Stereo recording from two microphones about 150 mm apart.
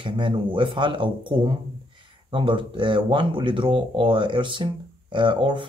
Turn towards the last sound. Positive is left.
turn(degrees=-30)  # may be behind; listen again after turning